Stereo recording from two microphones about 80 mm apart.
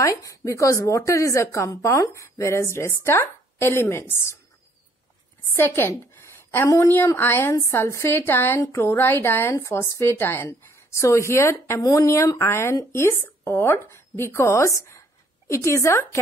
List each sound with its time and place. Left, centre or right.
0.0 s a woman's voice: left
5.5 s a woman's voice: left